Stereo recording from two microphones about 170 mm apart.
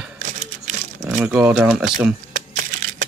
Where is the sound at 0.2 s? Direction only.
45° right (ahead or behind).